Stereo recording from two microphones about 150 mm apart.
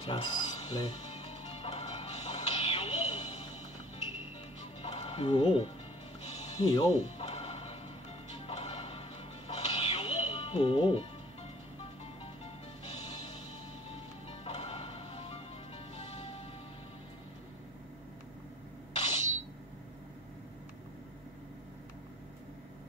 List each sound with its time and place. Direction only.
0.0 s music: 35° left (ahead or behind)
4.8 s music: 40° left (ahead or behind)
6.6 s speech: 25° left (ahead or behind)
6.9 s music: 45° left (ahead or behind)
14.4 s music: 40° left (ahead or behind)
18.9 s a sound: 45° left (ahead or behind)